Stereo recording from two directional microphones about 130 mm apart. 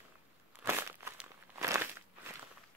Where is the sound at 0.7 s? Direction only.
15° right (ahead or behind).